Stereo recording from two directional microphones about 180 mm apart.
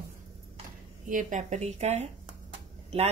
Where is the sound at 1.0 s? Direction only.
45° right (ahead or behind).